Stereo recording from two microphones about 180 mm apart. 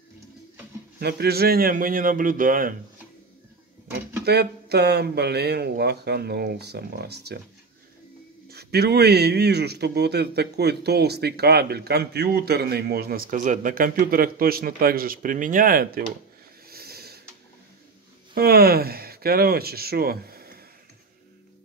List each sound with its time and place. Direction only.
0.9 s a man's voice: 60° right (ahead or behind)
4.2 s a man's voice: 65° right (ahead or behind)
8.5 s a man's voice: 60° right (ahead or behind)
16.7 s a sound: 60° right (ahead or behind)
18.3 s speech: 55° right (ahead or behind)